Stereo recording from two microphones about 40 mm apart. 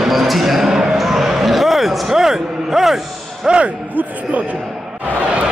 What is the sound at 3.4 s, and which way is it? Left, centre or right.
Speech, right.